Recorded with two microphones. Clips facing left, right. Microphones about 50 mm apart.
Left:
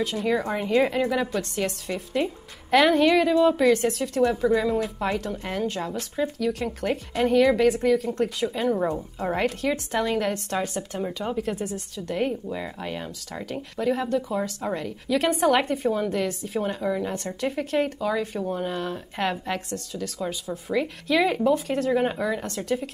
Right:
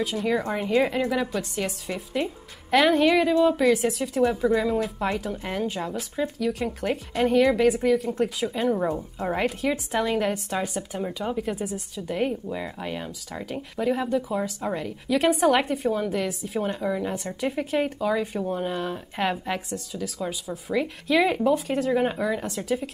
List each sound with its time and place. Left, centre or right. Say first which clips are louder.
0.0 s a woman's voice: even; centre